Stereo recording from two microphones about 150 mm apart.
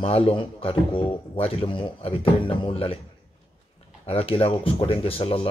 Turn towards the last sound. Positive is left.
turn(degrees=40)  # may be behind; listen again after turning